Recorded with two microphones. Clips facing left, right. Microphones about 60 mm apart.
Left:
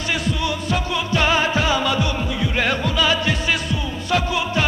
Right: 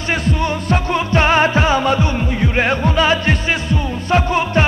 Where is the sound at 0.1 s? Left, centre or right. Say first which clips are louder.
Right 5 dB; right.